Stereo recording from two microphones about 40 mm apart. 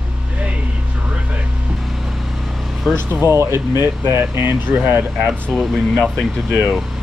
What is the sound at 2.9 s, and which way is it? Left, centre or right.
Speech, right.